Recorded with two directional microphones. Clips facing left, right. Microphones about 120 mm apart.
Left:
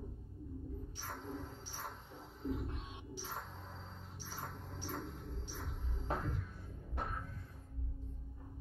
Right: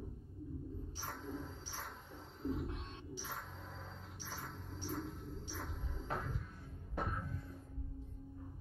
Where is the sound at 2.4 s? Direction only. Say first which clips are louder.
Right 1 dB; centre (ahead or behind).